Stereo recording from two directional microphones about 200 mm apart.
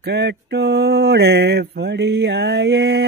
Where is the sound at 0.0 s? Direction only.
60° right (ahead or behind).